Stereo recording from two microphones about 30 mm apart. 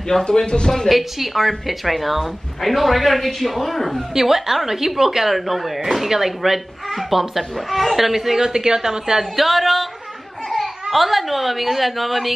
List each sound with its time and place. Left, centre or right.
0.2 s speech: left
0.8 s a woman's voice: centre
4.1 s a woman's voice: centre
8.4 s a woman's voice: right
9.4 s a woman's voice: centre